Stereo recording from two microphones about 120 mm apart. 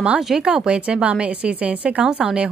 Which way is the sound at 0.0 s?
5° right (ahead or behind).